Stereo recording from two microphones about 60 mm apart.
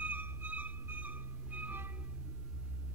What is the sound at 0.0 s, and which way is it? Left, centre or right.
Music, right.